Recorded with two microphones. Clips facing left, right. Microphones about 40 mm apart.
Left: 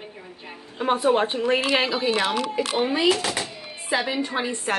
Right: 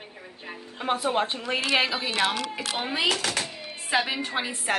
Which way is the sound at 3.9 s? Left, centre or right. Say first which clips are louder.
Left 1 dB; right.